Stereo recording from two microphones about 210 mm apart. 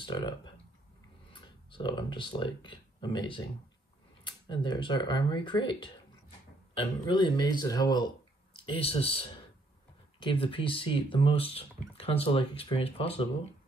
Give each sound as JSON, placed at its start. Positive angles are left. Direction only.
{"t": 0.0, "sound": "speech", "side_deg": 20}
{"t": 1.3, "sound": "speech", "side_deg": 20}